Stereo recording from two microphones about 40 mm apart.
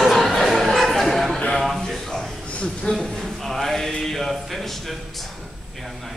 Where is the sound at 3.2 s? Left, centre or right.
Centre.